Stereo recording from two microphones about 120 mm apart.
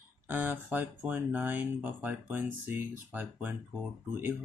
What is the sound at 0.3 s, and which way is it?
Speech, 15° right (ahead or behind).